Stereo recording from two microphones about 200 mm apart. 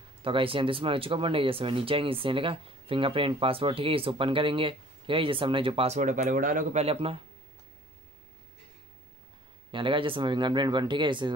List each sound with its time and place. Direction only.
0.2 s speech: 25° right (ahead or behind)
9.7 s speech: 25° right (ahead or behind)